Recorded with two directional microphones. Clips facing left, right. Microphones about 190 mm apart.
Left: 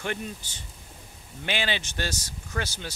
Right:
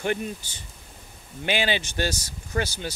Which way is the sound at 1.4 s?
10° right (ahead or behind).